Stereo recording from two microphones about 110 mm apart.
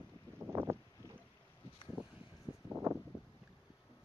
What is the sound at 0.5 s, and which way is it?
Boat, 20° right (ahead or behind).